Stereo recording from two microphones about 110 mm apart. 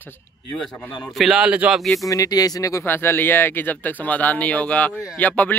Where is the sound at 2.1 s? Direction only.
35° left (ahead or behind); by 5.5 s 15° left (ahead or behind).